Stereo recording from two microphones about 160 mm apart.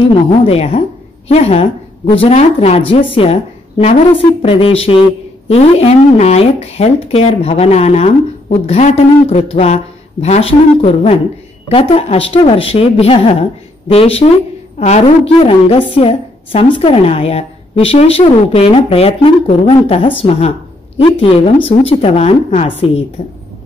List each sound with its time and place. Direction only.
0.0 s a woman's voice: 40° left (ahead or behind)